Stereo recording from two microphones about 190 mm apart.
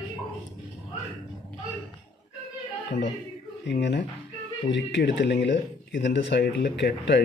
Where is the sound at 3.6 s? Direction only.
65° left (ahead or behind).